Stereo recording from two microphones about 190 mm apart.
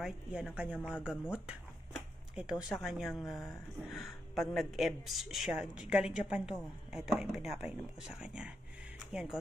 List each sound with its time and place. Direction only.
0.0 s speech: 5° right (ahead or behind)
0.7 s speech: 10° left (ahead or behind)
1.0 s speech: 5° right (ahead or behind)